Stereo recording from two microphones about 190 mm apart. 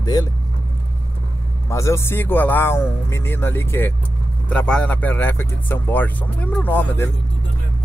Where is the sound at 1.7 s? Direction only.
15° left (ahead or behind).